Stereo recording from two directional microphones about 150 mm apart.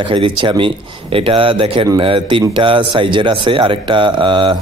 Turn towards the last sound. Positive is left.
turn(degrees=-30)  # may be behind; listen again after turning